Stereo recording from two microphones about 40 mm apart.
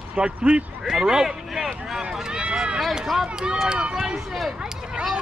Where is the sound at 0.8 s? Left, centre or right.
Centre.